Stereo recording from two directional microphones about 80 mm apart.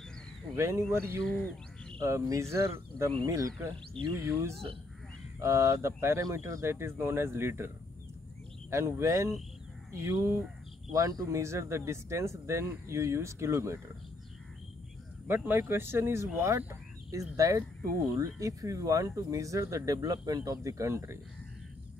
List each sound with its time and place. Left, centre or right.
0.6 s speech: right
1.3 s bird: centre
2.0 s speech: right
15.2 s speech: right
17.4 s speech: right